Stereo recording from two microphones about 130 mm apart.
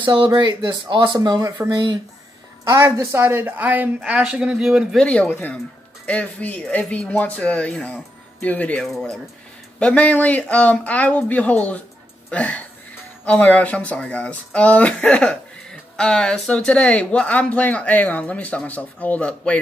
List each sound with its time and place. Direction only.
0.0 s speech: 40° right (ahead or behind); by 4.8 s 5° right (ahead or behind)
4.9 s speech: 10° left (ahead or behind)